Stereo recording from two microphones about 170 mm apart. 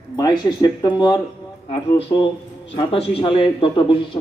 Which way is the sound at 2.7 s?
35° left (ahead or behind).